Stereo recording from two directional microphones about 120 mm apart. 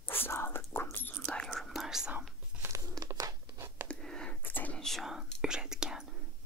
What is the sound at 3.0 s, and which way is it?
Crumpling, 30° right (ahead or behind).